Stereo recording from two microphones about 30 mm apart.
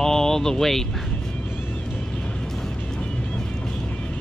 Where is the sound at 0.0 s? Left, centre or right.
Centre.